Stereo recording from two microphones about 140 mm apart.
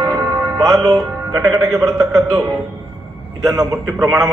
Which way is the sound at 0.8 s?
25° right (ahead or behind).